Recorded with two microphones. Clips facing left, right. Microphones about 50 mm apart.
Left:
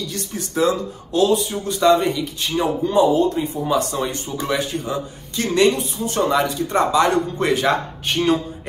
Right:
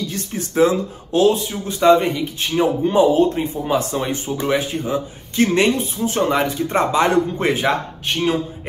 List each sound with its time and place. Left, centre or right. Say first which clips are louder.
0.1 s speech: right 2 dB; right
2.8 s speech: right 1 dB; right
8.1 s speech: left 1 dB; centre